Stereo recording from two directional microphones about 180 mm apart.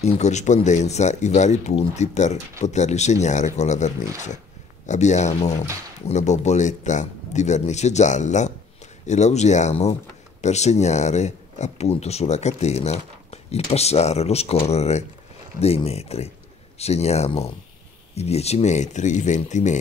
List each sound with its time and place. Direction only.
0.0 s speech: 40° left (ahead or behind)